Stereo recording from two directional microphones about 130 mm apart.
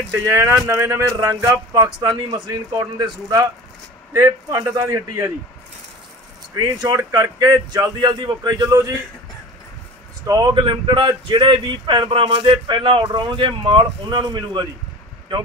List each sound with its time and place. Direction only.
0.1 s a man's voice: 20° right (ahead or behind)
6.8 s speech: 30° right (ahead or behind)
10.2 s a man's voice: 25° right (ahead or behind)
10.6 s speech: 40° right (ahead or behind)